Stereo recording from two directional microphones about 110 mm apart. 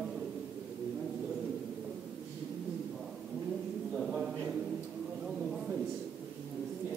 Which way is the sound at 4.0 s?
5° right (ahead or behind).